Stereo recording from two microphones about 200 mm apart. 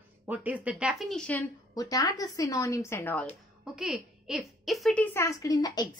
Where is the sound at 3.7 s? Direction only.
Centre (ahead or behind).